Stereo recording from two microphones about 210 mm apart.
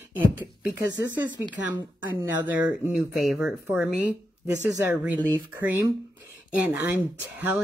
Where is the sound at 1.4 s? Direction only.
10° right (ahead or behind).